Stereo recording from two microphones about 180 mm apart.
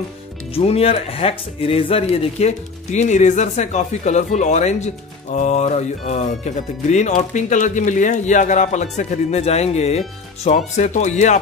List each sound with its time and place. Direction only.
0.6 s speech: 35° left (ahead or behind)